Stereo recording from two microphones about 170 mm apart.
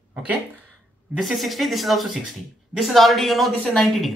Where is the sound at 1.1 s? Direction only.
Centre (ahead or behind).